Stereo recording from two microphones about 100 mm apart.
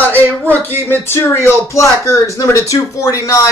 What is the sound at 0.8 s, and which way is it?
Speech, 20° left (ahead or behind).